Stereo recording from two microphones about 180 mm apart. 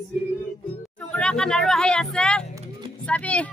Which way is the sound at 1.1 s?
5° left (ahead or behind).